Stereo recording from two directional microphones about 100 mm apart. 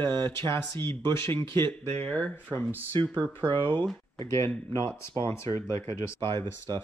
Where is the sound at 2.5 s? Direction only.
20° right (ahead or behind).